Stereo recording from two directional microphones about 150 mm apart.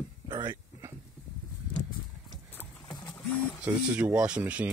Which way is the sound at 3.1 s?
10° left (ahead or behind).